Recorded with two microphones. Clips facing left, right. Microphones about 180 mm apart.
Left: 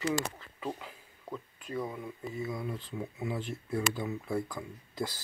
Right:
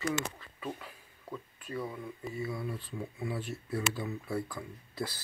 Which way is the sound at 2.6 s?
10° right (ahead or behind).